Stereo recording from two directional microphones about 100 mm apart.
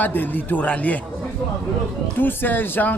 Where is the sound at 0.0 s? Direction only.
20° left (ahead or behind).